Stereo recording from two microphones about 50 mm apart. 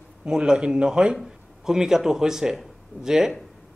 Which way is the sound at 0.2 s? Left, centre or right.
Centre.